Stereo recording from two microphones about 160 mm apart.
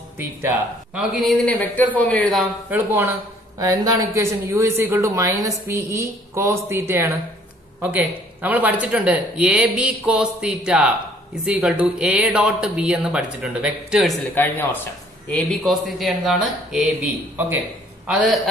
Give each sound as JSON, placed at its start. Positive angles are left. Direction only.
{"t": 1.2, "sound": "speech", "side_deg": 5}
{"t": 2.3, "sound": "speech", "side_deg": 0}
{"t": 2.9, "sound": "a woman's voice", "side_deg": -15}
{"t": 14.3, "sound": "speech", "side_deg": 10}